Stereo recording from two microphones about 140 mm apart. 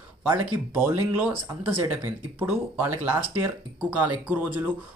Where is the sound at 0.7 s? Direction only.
15° right (ahead or behind).